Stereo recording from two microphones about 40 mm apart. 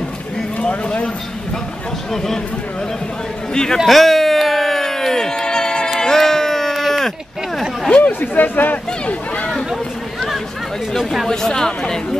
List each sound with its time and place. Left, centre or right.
0.6 s speech: left
3.7 s a sound: centre
8.0 s speech: left
11.0 s speech: centre
11.2 s speech: centre